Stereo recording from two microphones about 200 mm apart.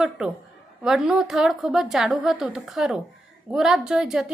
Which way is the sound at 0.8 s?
Centre (ahead or behind).